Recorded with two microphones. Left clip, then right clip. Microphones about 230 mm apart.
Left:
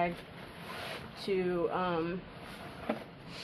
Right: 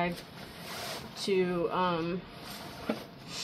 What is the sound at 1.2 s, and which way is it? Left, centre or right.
Speech, right.